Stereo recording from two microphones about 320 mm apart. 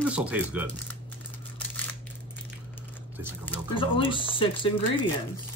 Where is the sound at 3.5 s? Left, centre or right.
Centre.